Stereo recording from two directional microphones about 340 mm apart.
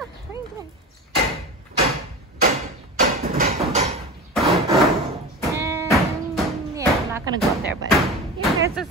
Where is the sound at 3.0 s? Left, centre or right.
Right.